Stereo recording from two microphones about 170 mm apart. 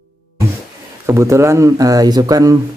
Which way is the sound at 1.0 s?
15° right (ahead or behind).